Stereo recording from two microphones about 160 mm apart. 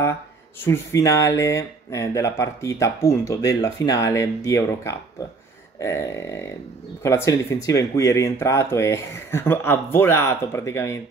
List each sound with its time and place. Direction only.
0.7 s speech: 20° left (ahead or behind)